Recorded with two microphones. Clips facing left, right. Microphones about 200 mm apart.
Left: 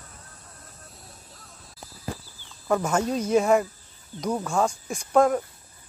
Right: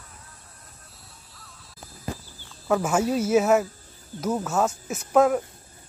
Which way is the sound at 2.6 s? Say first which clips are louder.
Right 1 dB; 5° right (ahead or behind).